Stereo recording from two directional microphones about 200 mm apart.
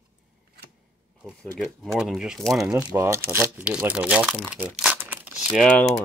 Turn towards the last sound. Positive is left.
turn(degrees=5)  # may be behind; listen again after turning